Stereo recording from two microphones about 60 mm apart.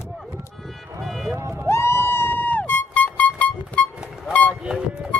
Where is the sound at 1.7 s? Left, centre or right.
Left.